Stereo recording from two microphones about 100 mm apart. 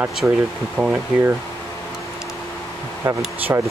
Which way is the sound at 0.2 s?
15° right (ahead or behind).